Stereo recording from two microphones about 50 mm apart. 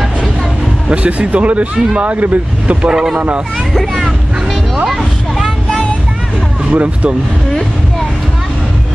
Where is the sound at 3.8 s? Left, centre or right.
Centre.